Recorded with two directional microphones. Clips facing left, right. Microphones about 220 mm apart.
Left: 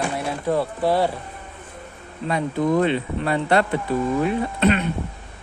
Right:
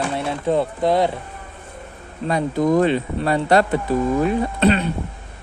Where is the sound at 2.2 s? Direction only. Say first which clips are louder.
Right 3 dB; 40° right (ahead or behind).